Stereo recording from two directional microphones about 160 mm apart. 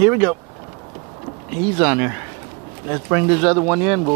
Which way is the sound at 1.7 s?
10° right (ahead or behind).